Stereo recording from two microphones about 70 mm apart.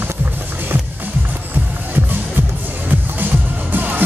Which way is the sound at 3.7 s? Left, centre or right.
Right.